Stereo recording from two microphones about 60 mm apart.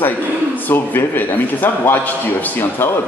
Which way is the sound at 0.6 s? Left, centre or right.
Left.